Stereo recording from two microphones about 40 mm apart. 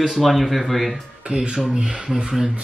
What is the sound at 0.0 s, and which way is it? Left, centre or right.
Speech, centre.